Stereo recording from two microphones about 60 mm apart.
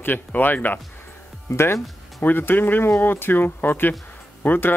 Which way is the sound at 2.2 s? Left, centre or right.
Left.